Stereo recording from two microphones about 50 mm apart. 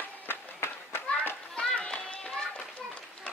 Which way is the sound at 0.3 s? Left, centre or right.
Left.